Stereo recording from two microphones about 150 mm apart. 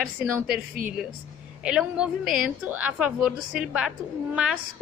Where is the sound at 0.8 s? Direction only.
60° right (ahead or behind).